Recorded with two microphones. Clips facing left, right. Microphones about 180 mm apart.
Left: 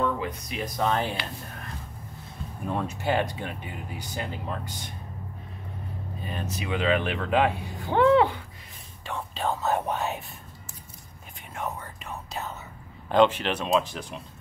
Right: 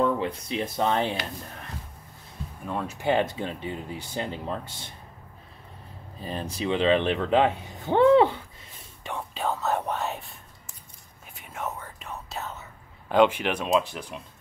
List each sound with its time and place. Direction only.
0.0 s speech: 30° right (ahead or behind)
3.0 s speech: 20° right (ahead or behind)
6.2 s speech: 30° right (ahead or behind)
9.0 s whispering: 15° right (ahead or behind)
9.4 s whispering: centre (ahead or behind)
11.5 s whispering: centre (ahead or behind)
13.1 s speech: 10° right (ahead or behind)